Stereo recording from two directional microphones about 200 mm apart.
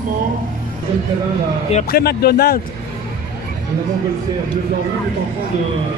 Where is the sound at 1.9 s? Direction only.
50° left (ahead or behind).